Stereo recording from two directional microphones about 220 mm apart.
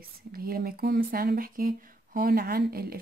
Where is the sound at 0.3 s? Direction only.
45° right (ahead or behind).